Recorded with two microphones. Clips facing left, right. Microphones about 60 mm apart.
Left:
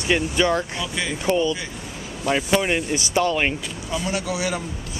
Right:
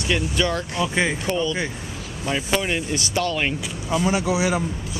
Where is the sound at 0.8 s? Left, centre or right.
Right.